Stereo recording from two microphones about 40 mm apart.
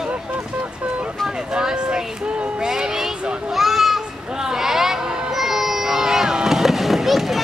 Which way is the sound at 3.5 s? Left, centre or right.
Centre.